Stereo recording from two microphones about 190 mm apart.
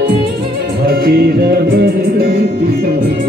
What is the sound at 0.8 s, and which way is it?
Music, 55° right (ahead or behind).